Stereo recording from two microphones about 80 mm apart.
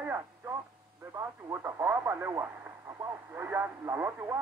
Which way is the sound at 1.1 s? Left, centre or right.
Right.